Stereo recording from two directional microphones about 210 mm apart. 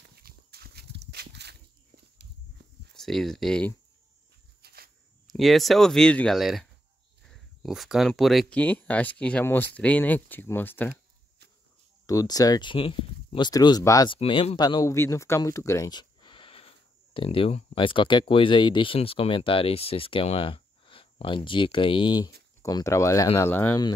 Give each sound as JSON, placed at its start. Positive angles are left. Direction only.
{"t": 0.1, "sound": "a sound", "side_deg": -50}
{"t": 2.9, "sound": "speech", "side_deg": 0}
{"t": 4.6, "sound": "cricket", "side_deg": -50}
{"t": 5.2, "sound": "speech", "side_deg": 0}
{"t": 12.1, "sound": "speech", "side_deg": 15}